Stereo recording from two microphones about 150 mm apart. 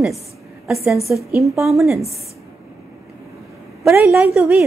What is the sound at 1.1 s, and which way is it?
Speech, 10° right (ahead or behind).